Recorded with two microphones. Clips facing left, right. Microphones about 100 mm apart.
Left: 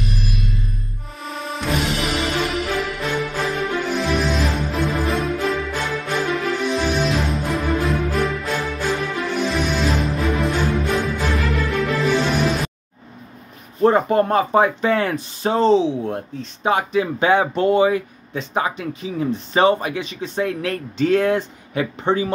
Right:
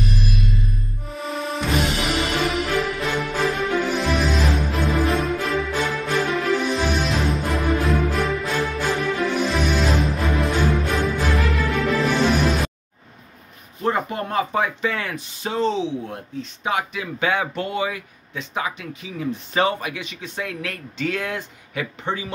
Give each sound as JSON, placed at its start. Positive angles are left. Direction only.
{"t": 1.1, "sound": "music", "side_deg": 0}
{"t": 13.8, "sound": "speech", "side_deg": 35}